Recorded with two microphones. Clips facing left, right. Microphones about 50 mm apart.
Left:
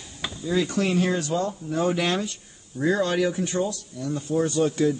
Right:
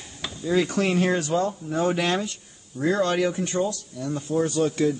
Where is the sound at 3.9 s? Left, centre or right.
Right.